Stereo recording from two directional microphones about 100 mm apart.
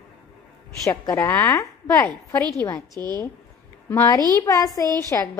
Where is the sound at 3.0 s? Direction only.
20° left (ahead or behind).